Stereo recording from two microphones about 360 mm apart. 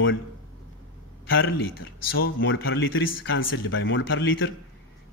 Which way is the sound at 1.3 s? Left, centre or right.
Left.